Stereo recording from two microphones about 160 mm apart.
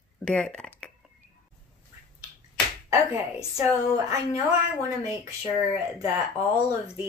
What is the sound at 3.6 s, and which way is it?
Speech, 20° right (ahead or behind).